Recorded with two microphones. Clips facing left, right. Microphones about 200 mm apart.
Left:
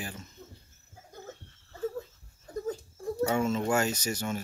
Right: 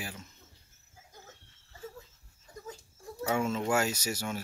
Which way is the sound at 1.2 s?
55° left (ahead or behind).